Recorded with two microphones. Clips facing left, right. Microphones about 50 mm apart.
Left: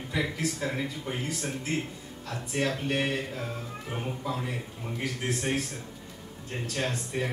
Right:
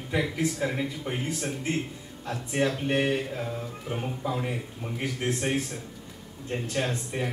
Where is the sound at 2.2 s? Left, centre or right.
Right.